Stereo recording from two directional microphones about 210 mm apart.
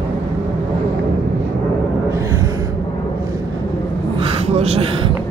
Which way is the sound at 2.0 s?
15° right (ahead or behind).